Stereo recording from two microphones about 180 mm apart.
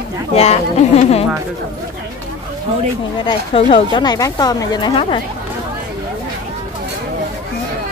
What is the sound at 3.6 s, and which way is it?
Speech, 30° left (ahead or behind).